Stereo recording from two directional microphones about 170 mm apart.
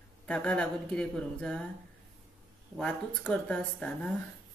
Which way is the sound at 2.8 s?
5° left (ahead or behind).